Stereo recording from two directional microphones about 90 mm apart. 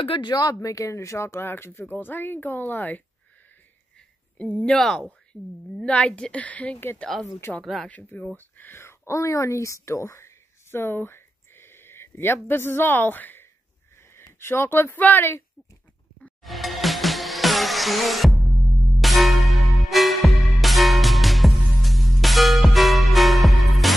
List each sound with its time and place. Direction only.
0.0 s speech: 75° left (ahead or behind)
0.3 s speech: 45° left (ahead or behind); by 3.0 s 20° left (ahead or behind)
4.4 s a woman's voice: 15° left (ahead or behind)
7.6 s speech: centre (ahead or behind)
7.9 s a woman's voice: 15° left (ahead or behind)
16.4 s music: centre (ahead or behind)